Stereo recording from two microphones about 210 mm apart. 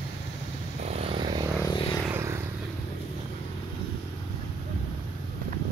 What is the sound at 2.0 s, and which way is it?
Vehicle, 10° right (ahead or behind).